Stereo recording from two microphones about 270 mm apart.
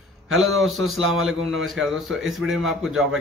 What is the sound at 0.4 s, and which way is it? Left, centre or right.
Speech, centre.